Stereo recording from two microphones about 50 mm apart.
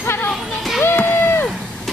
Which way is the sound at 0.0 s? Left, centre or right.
Left.